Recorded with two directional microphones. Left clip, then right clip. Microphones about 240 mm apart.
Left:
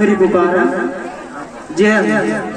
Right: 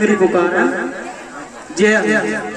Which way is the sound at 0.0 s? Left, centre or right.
Right.